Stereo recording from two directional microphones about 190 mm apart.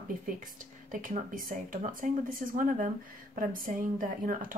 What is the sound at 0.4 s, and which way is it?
Speech, 45° right (ahead or behind).